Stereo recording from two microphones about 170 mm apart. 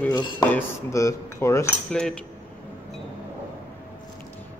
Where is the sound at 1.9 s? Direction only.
5° left (ahead or behind).